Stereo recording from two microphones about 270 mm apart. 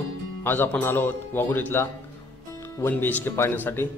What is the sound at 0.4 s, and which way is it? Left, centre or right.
A man's voice, centre.